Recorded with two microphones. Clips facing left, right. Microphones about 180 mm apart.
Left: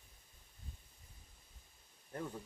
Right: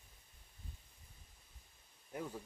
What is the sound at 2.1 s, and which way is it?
Speech, 5° right (ahead or behind).